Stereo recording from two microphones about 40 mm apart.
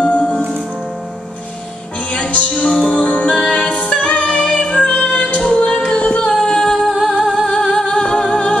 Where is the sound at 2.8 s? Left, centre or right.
Left.